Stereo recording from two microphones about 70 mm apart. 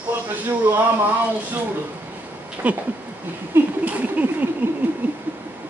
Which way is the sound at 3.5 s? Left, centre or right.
Right.